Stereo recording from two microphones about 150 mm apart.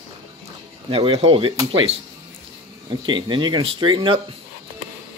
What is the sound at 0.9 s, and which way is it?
Speech, 40° right (ahead or behind).